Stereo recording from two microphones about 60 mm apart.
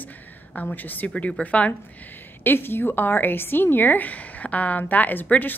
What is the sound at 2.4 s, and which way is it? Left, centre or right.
A woman's voice, left.